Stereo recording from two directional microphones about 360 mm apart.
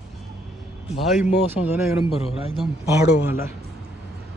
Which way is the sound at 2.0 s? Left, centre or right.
Centre.